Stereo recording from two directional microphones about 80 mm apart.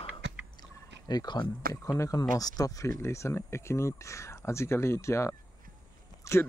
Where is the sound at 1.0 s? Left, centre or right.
Left.